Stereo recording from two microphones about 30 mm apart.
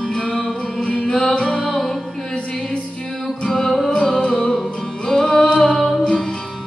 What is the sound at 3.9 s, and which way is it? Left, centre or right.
Music, left.